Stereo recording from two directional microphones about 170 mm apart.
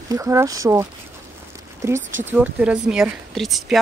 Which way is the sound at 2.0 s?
10° right (ahead or behind).